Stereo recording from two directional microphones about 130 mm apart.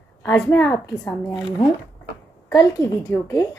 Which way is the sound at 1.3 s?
30° left (ahead or behind).